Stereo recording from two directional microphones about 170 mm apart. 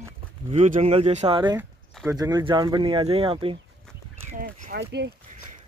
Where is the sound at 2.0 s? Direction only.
20° right (ahead or behind).